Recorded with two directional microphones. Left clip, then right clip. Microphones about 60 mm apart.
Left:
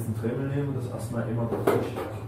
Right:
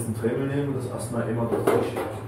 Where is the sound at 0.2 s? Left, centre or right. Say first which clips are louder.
Right 5 dB; centre.